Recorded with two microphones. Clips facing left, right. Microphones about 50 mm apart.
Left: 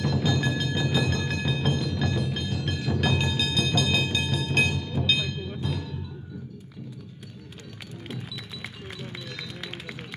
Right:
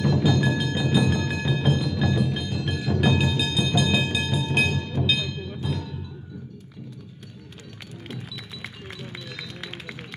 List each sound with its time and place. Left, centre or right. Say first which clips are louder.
0.0 s music: right 4 dB; centre
5.0 s train: even; centre
5.6 s timpani: right 3 dB; centre